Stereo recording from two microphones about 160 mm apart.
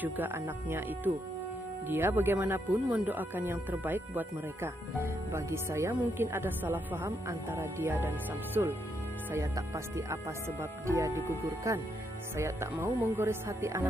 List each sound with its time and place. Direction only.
0.0 s speech: 10° right (ahead or behind)
9.3 s speech: 15° right (ahead or behind)